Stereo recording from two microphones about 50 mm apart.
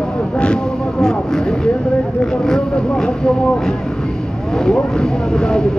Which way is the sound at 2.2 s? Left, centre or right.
Centre.